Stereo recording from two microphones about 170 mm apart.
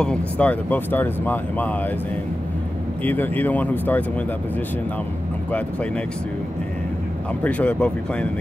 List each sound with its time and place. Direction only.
0.0 s speech: 5° left (ahead or behind)
3.0 s speech: 10° left (ahead or behind)
7.4 s speech: 10° left (ahead or behind)